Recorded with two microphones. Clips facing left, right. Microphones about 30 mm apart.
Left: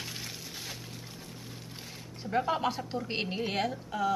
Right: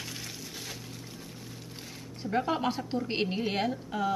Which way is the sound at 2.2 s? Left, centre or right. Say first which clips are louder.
Even; centre.